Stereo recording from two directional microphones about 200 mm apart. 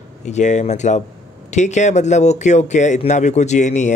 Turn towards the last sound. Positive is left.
turn(degrees=35)  # may be behind; listen again after turning